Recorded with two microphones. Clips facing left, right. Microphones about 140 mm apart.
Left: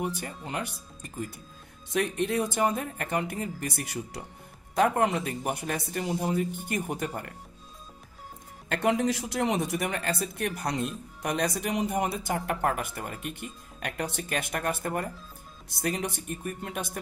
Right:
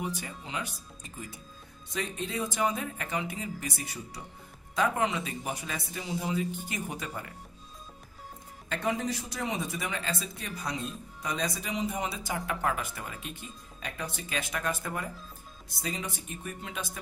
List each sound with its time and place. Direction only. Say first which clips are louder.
0.0 s speech: left 3 dB; 55° left (ahead or behind); by 4.2 s 80° left
4.7 s speech: left 4 dB; 55° left (ahead or behind)
8.6 s speech: left 5 dB; 70° left (ahead or behind)
16.4 s speech: left 3 dB; 50° left (ahead or behind)